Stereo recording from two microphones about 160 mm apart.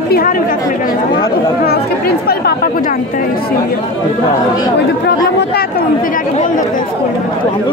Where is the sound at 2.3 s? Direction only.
75° left (ahead or behind).